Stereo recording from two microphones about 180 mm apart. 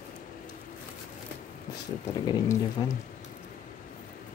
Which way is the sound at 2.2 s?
20° left (ahead or behind).